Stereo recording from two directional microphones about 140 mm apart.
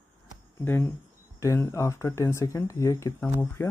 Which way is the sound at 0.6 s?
15° left (ahead or behind).